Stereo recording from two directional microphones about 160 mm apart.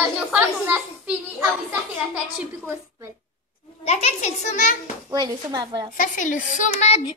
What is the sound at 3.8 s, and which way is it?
Speech, 45° left (ahead or behind).